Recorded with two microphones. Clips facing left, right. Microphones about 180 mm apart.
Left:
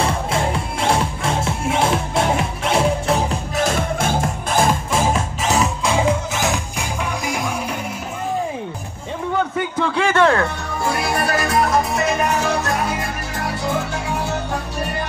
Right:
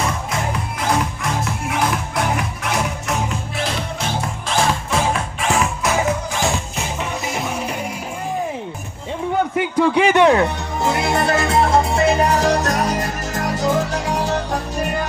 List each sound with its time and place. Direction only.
0.0 s music: 30° left (ahead or behind); by 4.7 s 50° left (ahead or behind)
4.9 s music: 10° left (ahead or behind)
9.6 s music: 15° right (ahead or behind); by 14.6 s 35° right (ahead or behind)